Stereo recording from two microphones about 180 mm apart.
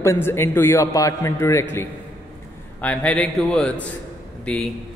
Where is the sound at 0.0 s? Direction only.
15° left (ahead or behind).